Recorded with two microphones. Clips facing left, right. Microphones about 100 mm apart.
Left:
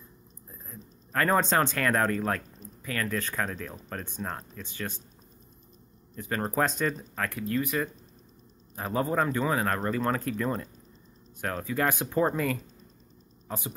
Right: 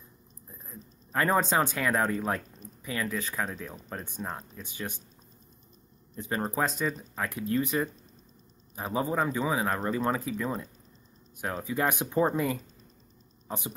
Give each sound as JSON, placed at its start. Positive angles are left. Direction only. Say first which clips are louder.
{"t": 0.7, "sound": "a sound", "louder": "left 1 dB", "side_deg": -15}
{"t": 1.4, "sound": "speech", "louder": "left 1 dB", "side_deg": -10}
{"t": 3.1, "sound": "speech", "louder": "left 1 dB", "side_deg": -5}
{"t": 6.1, "sound": "speech", "louder": "even", "side_deg": -20}
{"t": 6.4, "sound": "speech", "louder": "left 3 dB", "side_deg": -5}
{"t": 7.2, "sound": "speech", "louder": "right 1 dB", "side_deg": -25}
{"t": 8.7, "sound": "speech", "louder": "left 1 dB", "side_deg": -10}
{"t": 11.4, "sound": "speech", "louder": "left 1 dB", "side_deg": -15}